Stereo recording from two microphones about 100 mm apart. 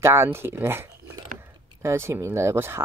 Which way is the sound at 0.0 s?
25° right (ahead or behind).